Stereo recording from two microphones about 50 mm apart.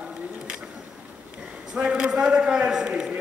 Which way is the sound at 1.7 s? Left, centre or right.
Centre.